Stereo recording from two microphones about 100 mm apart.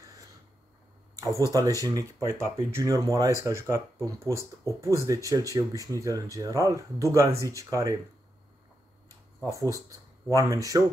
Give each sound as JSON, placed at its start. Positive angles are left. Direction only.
{"t": 1.5, "sound": "speech", "side_deg": -35}
{"t": 9.4, "sound": "speech", "side_deg": -35}